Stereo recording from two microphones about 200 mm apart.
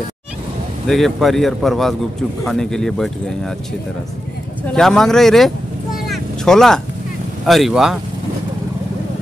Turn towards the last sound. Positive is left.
turn(degrees=0)  # may be behind; listen again after turning